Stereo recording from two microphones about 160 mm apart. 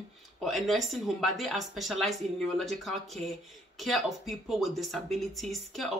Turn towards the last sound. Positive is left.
turn(degrees=0)  # may be behind; listen again after turning